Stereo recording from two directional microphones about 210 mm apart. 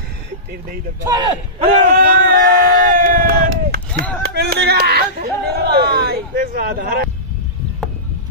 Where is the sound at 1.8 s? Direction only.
40° right (ahead or behind).